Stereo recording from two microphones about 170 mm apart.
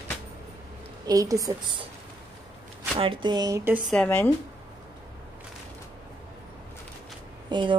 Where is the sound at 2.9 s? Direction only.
30° right (ahead or behind); by 3.8 s 15° right (ahead or behind).